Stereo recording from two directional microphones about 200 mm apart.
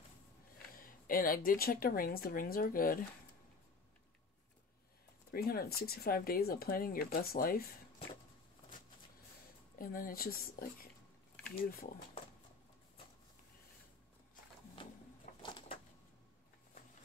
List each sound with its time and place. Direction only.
0.7 s speech: 45° left (ahead or behind)
5.3 s speech: 50° left (ahead or behind)
9.8 s speech: 45° left (ahead or behind)
14.8 s a sound: 25° left (ahead or behind)